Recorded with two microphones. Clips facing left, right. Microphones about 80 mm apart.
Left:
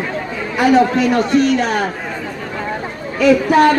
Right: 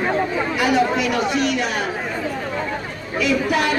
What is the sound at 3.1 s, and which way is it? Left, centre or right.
Speech, left.